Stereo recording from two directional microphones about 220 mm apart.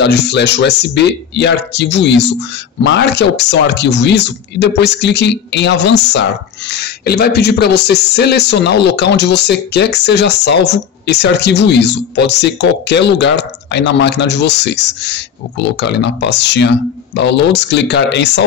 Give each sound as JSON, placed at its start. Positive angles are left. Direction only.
{"t": 0.0, "sound": "speech", "side_deg": 50}